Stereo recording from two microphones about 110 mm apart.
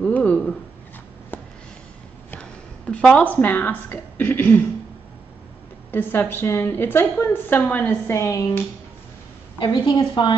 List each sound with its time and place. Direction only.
0.0 s a sound: 10° left (ahead or behind)
2.9 s a woman's voice: 10° left (ahead or behind)
5.9 s a woman's voice: 20° left (ahead or behind)
9.6 s a woman's voice: 45° left (ahead or behind)